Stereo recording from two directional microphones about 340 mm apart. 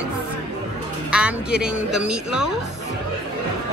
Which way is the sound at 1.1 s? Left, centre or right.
Centre.